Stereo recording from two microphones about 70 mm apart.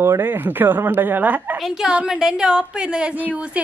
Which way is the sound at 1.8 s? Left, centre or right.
Centre.